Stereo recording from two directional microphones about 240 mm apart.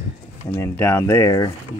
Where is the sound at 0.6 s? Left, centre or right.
Centre.